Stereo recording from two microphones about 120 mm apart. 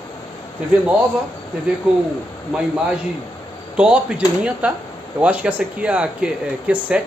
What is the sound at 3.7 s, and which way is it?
Speech, 10° right (ahead or behind).